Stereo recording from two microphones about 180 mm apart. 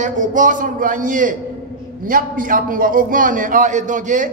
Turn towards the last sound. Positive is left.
turn(degrees=-45)  # may be behind; listen again after turning